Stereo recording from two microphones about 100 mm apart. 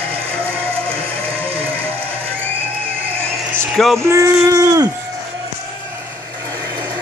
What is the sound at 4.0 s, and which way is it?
Speech, 30° right (ahead or behind).